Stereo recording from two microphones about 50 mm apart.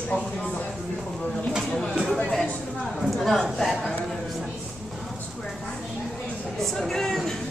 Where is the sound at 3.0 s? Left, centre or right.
Centre.